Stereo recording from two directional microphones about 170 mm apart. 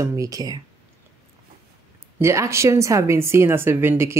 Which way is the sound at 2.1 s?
15° right (ahead or behind).